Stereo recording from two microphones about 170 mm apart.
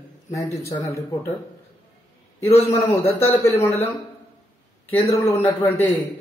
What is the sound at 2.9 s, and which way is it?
Speech, 15° left (ahead or behind).